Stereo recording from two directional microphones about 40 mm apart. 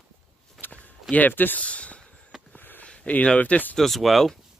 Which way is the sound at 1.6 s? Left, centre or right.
Left.